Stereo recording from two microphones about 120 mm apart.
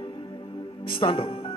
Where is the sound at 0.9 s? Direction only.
45° left (ahead or behind).